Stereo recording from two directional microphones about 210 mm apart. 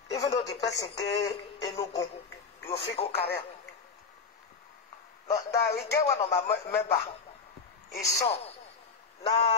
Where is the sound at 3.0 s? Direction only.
30° left (ahead or behind).